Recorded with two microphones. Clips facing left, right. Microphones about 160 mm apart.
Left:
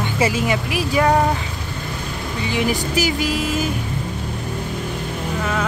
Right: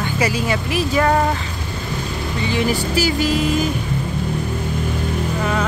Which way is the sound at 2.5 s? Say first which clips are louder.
Right 1 dB; 15° left (ahead or behind).